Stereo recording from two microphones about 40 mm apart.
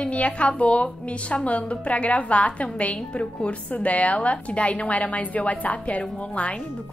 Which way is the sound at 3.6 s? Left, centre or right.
Left.